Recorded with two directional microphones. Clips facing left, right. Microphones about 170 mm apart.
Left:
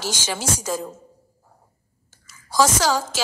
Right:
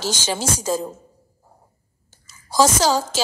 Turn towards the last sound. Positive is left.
turn(degrees=-30)  # may be behind; listen again after turning